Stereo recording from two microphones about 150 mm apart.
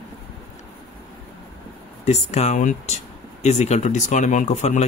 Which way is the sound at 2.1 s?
45° left (ahead or behind).